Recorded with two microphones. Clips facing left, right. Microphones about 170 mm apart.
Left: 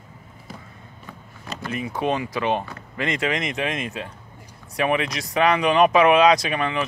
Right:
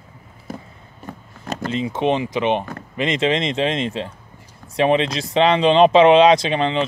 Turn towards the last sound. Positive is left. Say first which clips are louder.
# right 5 dB
turn(degrees=-25)  # may be behind; listen again after turning